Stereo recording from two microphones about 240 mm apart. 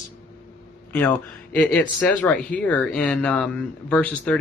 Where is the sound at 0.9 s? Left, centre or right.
Centre.